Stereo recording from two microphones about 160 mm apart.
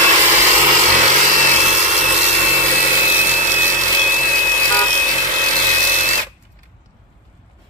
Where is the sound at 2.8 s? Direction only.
15° right (ahead or behind).